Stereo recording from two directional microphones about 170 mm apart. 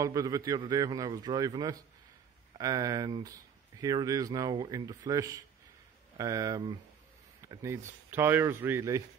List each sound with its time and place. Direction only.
0.0 s speech: 20° right (ahead or behind)